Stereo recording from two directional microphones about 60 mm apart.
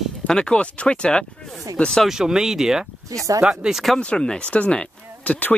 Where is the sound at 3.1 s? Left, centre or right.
Right.